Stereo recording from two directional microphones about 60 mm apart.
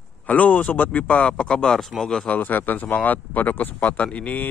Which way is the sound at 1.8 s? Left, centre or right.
Centre.